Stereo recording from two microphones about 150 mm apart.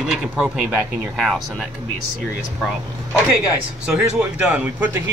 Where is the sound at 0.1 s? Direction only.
5° right (ahead or behind).